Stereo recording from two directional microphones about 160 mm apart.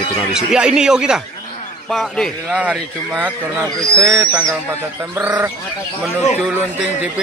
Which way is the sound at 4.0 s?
20° right (ahead or behind).